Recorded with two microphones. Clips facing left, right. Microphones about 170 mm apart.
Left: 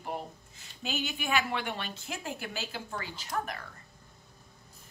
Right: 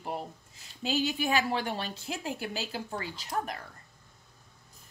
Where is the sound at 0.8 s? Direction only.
35° right (ahead or behind).